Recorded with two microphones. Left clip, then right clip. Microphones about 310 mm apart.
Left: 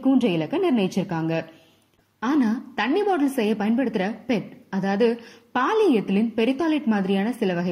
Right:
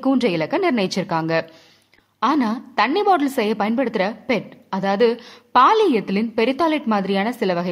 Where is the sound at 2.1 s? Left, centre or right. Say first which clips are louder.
Right 4 dB; centre.